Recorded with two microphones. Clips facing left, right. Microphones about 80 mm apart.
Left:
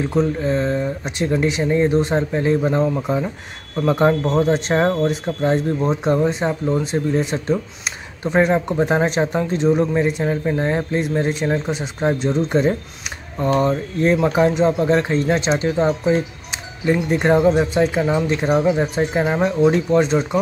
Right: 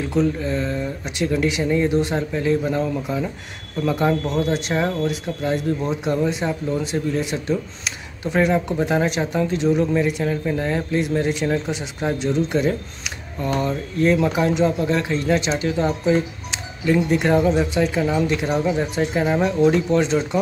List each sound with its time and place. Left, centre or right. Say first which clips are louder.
0.0 s speech: left 2 dB; left